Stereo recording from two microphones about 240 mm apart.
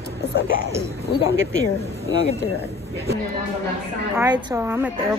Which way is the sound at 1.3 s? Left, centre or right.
Right.